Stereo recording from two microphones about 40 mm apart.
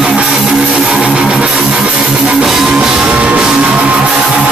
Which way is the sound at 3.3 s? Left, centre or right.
Centre.